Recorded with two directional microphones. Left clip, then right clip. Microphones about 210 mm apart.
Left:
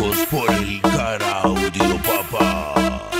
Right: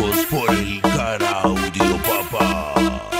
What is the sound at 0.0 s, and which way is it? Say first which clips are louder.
Music: even; centre (ahead or behind).